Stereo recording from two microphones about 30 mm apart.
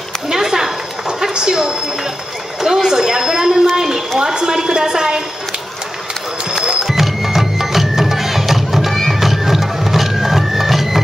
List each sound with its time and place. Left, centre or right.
0.3 s a sound: centre
1.5 s a woman's voice: right
2.6 s a sound: centre
4.2 s a woman's voice: centre
6.6 s music: right
6.9 s music: centre
9.2 s printer: centre